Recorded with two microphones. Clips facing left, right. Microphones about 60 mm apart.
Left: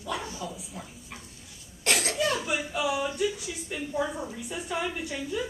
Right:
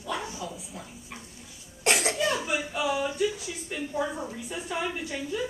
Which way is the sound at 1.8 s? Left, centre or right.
Right.